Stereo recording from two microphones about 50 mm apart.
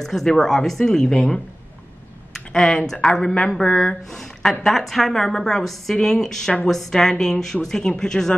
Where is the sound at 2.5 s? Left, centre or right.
Centre.